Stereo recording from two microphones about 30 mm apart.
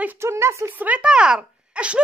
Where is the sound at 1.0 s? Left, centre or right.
Right.